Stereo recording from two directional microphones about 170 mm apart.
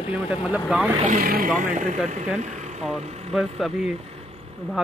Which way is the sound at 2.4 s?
45° right (ahead or behind).